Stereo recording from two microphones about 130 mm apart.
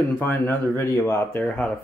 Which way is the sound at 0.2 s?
15° left (ahead or behind).